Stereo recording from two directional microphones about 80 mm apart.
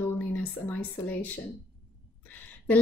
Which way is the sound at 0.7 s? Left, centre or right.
Left.